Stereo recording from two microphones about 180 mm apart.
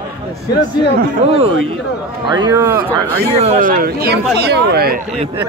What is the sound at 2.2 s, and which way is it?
Speech, 25° right (ahead or behind).